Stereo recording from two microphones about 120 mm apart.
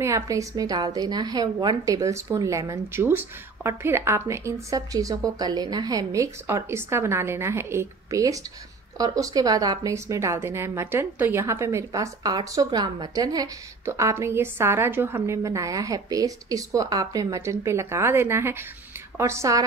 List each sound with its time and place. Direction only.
0.0 s a woman's voice: 25° right (ahead or behind)